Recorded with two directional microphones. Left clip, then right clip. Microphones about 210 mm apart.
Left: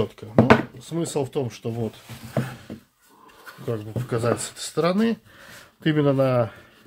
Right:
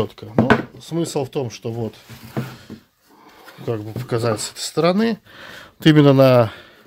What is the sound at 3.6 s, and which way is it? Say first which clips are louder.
Speech: right 4 dB; 40° right (ahead or behind).